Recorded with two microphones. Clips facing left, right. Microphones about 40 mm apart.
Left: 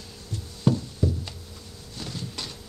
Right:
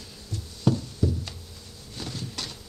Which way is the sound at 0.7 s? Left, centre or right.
Centre.